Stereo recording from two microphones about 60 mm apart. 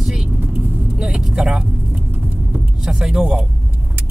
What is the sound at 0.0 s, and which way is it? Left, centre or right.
Vehicle, centre.